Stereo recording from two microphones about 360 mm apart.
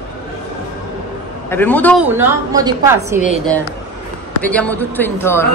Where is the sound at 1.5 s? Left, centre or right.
Centre.